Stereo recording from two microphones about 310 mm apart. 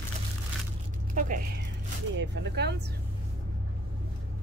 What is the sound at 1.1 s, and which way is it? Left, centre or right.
Speech, right.